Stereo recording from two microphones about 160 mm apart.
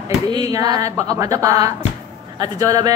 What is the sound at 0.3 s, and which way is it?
A woman's voice, 25° right (ahead or behind).